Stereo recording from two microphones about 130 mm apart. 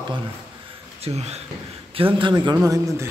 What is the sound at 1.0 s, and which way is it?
Speech, 55° right (ahead or behind).